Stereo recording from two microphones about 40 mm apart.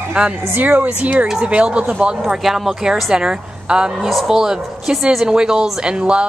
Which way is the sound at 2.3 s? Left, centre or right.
Centre.